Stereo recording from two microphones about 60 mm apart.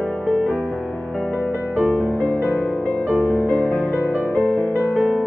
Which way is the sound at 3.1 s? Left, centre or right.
Right.